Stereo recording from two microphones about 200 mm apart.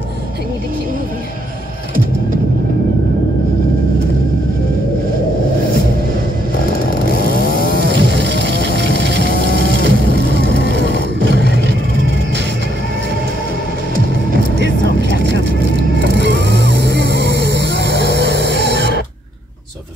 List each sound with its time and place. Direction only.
7.1 s chainsaw: 50° left (ahead or behind)
7.8 s a sound: 60° right (ahead or behind)
8.5 s a sound: 50° left (ahead or behind)
8.9 s music: 60° right (ahead or behind)
9.2 s music: 50° left (ahead or behind)
15.2 s vehicle: 60° right (ahead or behind)